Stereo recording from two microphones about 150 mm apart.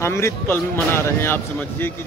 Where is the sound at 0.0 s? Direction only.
15° left (ahead or behind).